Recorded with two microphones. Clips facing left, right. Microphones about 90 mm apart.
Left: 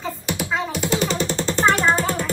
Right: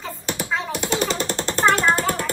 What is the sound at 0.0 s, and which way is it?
Typing, 10° left (ahead or behind).